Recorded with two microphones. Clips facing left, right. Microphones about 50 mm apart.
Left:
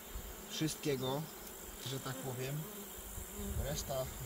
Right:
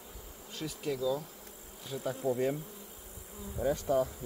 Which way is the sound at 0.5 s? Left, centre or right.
Centre.